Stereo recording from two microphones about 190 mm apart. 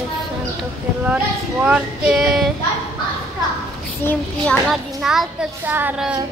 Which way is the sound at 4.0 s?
10° left (ahead or behind).